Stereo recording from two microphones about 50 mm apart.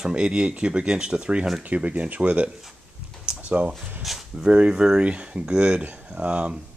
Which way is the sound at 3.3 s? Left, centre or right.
Centre.